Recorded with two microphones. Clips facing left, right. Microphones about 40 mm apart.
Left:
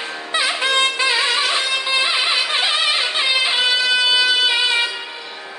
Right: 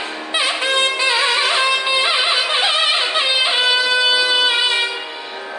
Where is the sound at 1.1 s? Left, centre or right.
Centre.